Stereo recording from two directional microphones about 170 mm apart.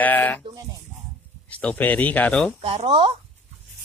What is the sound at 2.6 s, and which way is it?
Speech, 35° right (ahead or behind).